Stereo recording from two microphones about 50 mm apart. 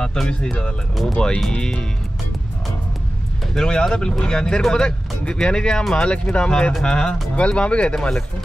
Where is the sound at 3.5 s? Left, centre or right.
Centre.